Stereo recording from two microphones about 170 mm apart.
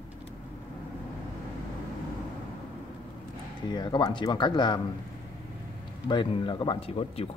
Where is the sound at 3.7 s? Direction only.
25° left (ahead or behind).